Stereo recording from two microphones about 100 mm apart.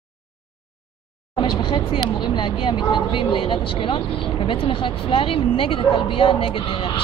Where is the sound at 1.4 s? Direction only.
50° left (ahead or behind).